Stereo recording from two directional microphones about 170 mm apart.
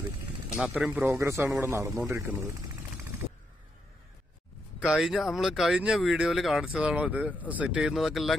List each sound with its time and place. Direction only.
0.6 s a man's voice: 5° right (ahead or behind)
4.7 s speech: centre (ahead or behind)